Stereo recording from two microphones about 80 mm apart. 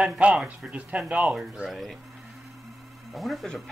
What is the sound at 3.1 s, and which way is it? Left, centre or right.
Speech, centre.